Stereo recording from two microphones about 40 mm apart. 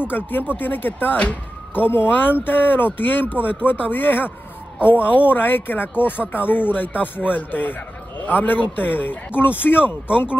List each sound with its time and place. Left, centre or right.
0.1 s speech: left